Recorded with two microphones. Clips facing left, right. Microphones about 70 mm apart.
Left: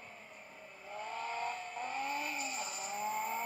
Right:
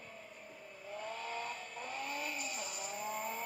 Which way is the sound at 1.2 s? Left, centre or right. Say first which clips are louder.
Left 3 dB; left.